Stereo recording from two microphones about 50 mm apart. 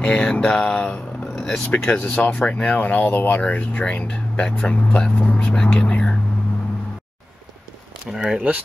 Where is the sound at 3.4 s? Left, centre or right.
Left.